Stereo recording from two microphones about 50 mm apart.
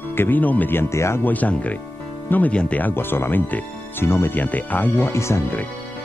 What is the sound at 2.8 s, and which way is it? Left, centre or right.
Speech, left.